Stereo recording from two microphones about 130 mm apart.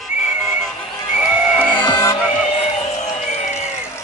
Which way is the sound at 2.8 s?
60° left (ahead or behind).